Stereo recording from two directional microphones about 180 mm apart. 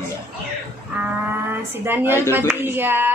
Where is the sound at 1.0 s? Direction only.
10° right (ahead or behind).